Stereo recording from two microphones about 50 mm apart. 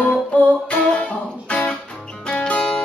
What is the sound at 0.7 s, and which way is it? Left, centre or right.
Music, left.